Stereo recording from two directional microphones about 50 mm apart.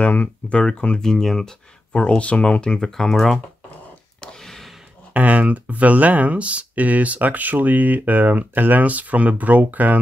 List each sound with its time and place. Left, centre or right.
0.0 s speech: left
0.5 s speech: centre
1.9 s speech: left
4.2 s a sound: centre
5.1 s speech: right